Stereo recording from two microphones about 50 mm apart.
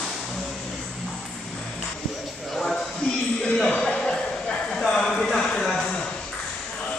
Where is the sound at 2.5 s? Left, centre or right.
Centre.